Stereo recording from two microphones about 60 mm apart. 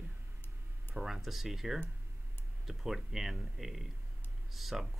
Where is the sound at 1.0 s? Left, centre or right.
Centre.